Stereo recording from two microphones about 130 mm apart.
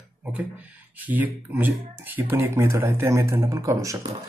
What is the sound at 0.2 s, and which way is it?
Speech, 10° right (ahead or behind).